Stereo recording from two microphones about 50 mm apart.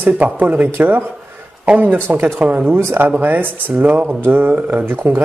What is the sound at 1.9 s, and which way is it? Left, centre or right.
Speech, right.